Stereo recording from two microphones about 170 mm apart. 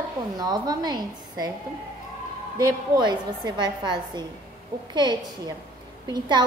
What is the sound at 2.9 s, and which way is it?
A woman's voice, 25° right (ahead or behind).